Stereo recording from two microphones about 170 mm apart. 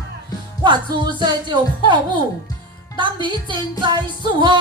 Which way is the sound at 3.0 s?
25° right (ahead or behind).